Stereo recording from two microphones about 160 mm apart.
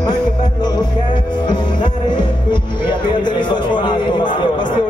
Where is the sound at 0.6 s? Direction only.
25° left (ahead or behind).